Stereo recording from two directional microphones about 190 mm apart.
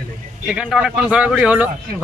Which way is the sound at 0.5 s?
5° right (ahead or behind).